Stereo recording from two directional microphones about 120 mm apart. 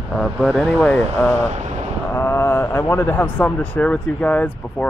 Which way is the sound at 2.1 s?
20° left (ahead or behind).